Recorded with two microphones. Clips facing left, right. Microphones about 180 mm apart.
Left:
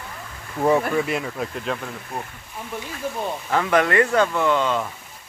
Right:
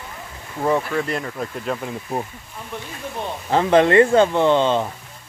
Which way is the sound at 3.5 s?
30° right (ahead or behind).